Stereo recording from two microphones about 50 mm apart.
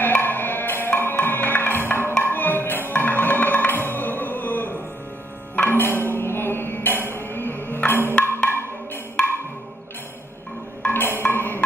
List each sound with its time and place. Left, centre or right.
0.0 s music: left
10.9 s music: left